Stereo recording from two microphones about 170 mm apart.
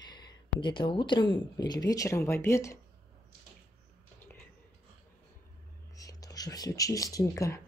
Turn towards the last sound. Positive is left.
turn(degrees=20)  # may be behind; listen again after turning